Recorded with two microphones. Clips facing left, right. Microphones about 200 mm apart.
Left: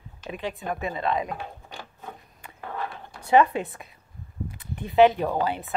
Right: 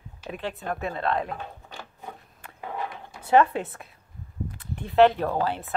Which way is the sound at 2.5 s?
15° right (ahead or behind).